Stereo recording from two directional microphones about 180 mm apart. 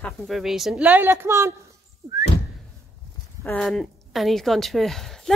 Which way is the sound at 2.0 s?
20° right (ahead or behind).